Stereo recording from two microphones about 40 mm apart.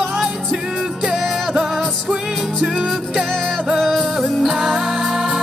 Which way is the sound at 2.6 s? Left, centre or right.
Centre.